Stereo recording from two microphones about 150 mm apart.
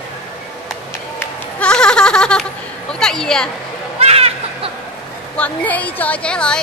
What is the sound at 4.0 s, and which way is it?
Children playing, 40° right (ahead or behind).